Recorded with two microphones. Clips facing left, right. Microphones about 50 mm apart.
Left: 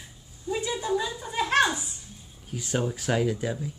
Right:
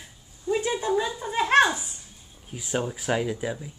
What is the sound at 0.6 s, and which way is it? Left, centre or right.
Speech, right.